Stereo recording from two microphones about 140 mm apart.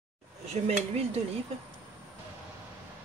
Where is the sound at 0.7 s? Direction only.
50° right (ahead or behind).